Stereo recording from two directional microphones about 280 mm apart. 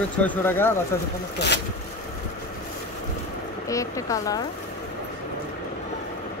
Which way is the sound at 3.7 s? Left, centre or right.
Centre.